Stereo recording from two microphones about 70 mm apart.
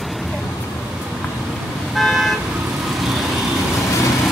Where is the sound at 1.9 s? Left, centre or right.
Centre.